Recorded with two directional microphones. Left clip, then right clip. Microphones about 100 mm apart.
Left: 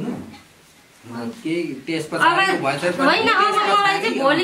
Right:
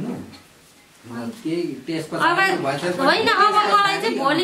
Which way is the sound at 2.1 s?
15° right (ahead or behind).